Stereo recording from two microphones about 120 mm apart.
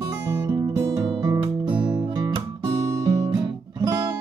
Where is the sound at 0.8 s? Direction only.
35° right (ahead or behind).